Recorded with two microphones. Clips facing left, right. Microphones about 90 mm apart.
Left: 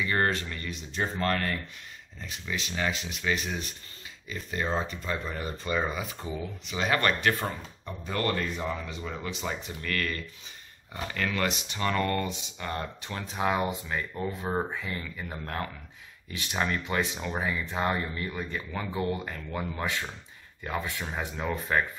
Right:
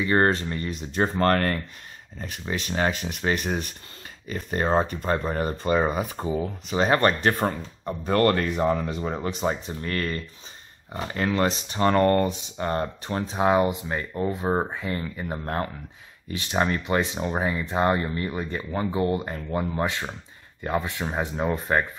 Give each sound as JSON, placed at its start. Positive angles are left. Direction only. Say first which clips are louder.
{"t": 0.0, "sound": "speech", "louder": "right 6 dB", "side_deg": -35}
{"t": 7.4, "sound": "speech", "louder": "right 8 dB", "side_deg": -55}
{"t": 17.7, "sound": "speech", "louder": "right 8 dB", "side_deg": -40}